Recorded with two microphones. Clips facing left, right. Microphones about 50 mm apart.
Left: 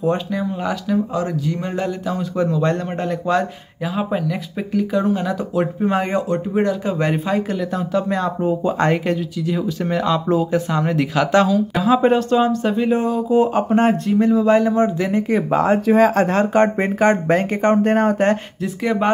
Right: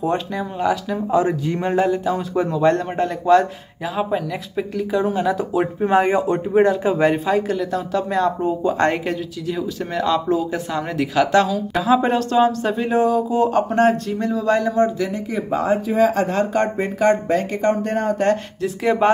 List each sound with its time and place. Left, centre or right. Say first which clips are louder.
0.0 s speech: left 2 dB; centre
1.1 s speech: right 4 dB; right
1.6 s speech: right 5 dB; centre
6.2 s speech: right 3 dB; centre
7.0 s a man's voice: right 2 dB; centre; by 15.0 s left
15.1 s speech: left 5 dB; left
16.5 s speech: left 4 dB; left
18.6 s speech: right 2 dB; centre